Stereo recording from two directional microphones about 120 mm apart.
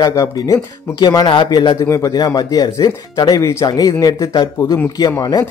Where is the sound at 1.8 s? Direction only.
25° left (ahead or behind).